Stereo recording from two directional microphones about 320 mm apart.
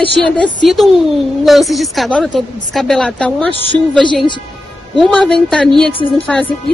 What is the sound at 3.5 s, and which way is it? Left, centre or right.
Speech, right.